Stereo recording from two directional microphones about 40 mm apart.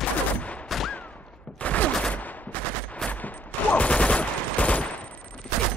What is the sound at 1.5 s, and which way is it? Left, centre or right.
Fusillade, left.